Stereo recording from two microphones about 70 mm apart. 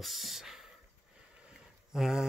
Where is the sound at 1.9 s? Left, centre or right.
Centre.